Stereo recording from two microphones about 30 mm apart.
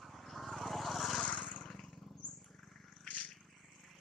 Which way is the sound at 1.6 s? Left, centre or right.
Left.